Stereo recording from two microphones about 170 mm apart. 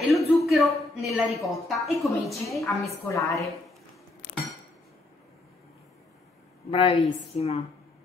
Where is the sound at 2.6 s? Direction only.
15° left (ahead or behind).